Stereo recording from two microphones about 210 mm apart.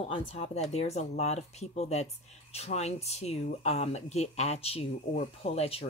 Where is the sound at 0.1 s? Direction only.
30° left (ahead or behind).